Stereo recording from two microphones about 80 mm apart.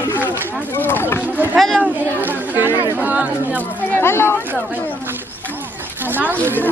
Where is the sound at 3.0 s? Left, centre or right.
Centre.